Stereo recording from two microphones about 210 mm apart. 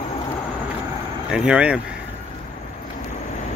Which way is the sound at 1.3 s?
5° right (ahead or behind).